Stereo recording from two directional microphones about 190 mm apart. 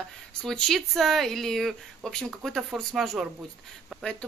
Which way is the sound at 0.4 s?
5° left (ahead or behind).